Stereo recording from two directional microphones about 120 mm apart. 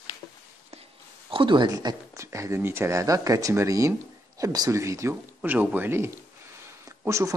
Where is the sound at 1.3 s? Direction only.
45° right (ahead or behind).